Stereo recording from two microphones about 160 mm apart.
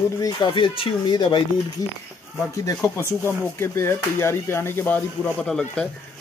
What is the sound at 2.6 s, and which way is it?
Speech, 20° left (ahead or behind).